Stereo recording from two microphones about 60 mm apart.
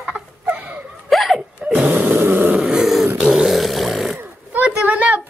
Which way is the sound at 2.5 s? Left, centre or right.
Centre.